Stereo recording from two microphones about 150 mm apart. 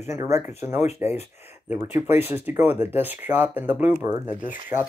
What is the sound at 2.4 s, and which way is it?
Speech, 15° right (ahead or behind).